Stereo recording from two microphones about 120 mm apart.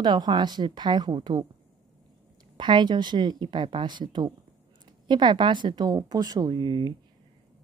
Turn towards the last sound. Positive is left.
turn(degrees=-40)  # may be behind; listen again after turning